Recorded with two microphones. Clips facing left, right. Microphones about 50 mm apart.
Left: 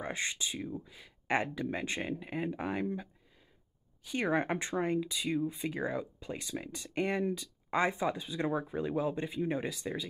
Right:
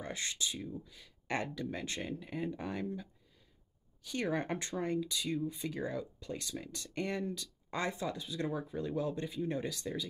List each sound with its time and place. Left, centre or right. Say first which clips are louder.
0.0 s speech: left 3 dB; left